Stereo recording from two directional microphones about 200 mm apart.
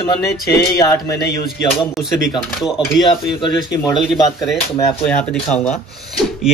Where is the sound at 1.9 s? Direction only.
Centre (ahead or behind).